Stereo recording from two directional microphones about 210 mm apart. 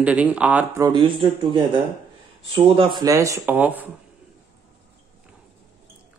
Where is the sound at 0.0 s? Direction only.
5° right (ahead or behind).